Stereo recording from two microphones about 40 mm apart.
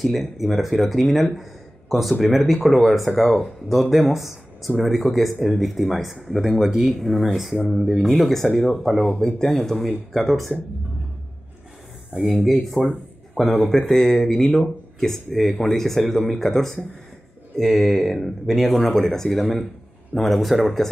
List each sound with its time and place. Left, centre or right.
0.0 s speech: centre
7.0 s speech: centre
8.1 s speech: centre
12.1 s speech: right
12.8 s speech: left
13.3 s speech: centre